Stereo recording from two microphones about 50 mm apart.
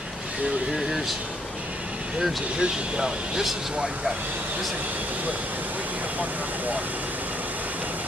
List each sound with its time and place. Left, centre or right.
0.7 s speech: centre
2.5 s speech: centre